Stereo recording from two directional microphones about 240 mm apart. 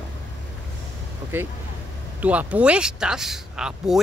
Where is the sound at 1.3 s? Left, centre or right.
Centre.